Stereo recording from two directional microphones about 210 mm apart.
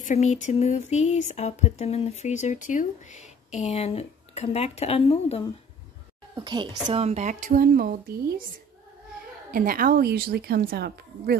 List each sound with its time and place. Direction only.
0.1 s a sound: 35° left (ahead or behind)
6.3 s speech: 20° right (ahead or behind); by 8.4 s 45° right (ahead or behind)
9.5 s a woman's voice: 45° right (ahead or behind)